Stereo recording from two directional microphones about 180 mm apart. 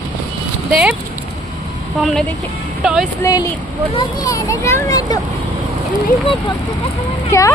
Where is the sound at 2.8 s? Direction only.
Centre (ahead or behind).